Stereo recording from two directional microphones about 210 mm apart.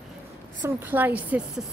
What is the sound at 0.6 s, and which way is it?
Speech, 10° right (ahead or behind).